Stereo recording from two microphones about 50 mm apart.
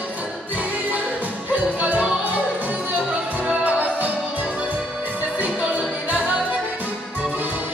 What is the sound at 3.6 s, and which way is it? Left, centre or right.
Music, right.